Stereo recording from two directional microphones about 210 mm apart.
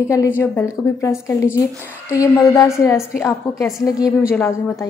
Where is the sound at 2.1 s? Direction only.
15° left (ahead or behind).